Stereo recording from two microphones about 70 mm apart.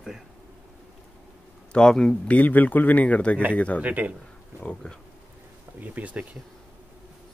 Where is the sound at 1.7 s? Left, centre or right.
Centre.